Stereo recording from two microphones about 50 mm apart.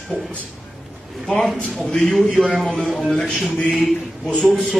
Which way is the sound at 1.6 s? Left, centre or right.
Centre.